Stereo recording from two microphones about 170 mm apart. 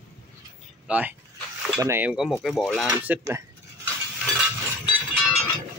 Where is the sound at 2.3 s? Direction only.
5° left (ahead or behind).